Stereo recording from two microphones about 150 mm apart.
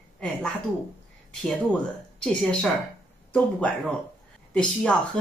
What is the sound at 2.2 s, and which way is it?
Speech, 5° left (ahead or behind).